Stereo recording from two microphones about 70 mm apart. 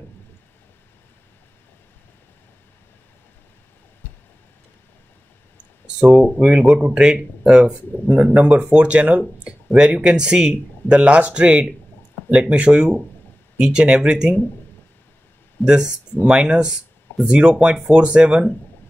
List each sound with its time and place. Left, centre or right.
5.9 s speech: centre
15.6 s speech: centre